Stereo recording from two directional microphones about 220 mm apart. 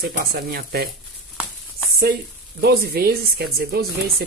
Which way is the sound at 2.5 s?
45° right (ahead or behind).